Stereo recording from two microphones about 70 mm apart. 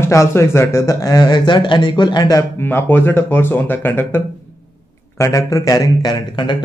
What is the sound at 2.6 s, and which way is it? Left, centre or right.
Speech, left.